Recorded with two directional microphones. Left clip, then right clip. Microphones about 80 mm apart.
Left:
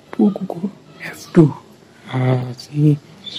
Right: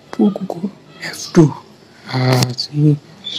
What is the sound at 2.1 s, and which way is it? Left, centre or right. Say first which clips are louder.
Speech: right 5 dB; right.